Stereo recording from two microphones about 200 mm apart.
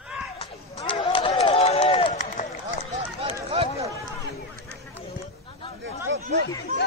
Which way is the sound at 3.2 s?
30° right (ahead or behind).